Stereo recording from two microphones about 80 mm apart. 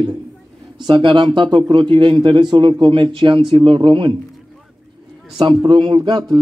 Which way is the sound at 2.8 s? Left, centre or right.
Right.